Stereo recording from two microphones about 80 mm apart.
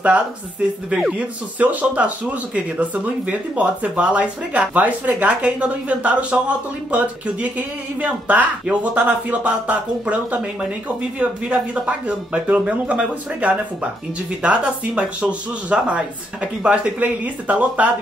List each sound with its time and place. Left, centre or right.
0.8 s speech: centre